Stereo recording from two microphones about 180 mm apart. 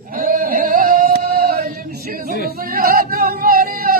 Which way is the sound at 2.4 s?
50° right (ahead or behind).